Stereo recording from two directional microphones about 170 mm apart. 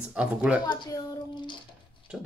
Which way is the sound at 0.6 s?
25° left (ahead or behind).